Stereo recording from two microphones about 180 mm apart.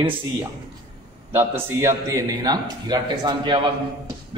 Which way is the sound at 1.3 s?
10° right (ahead or behind).